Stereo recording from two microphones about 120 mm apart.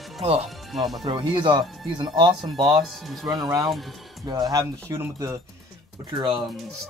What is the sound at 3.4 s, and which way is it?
Speech, 30° right (ahead or behind).